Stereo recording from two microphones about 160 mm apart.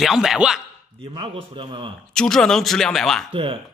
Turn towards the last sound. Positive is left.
turn(degrees=-35)  # may be behind; listen again after turning